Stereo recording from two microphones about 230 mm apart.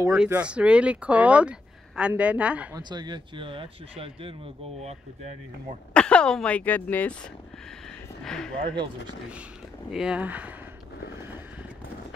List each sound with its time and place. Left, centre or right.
0.1 s speech: centre
2.8 s speech: centre
5.9 s speech: centre
8.2 s speech: centre
9.8 s speech: centre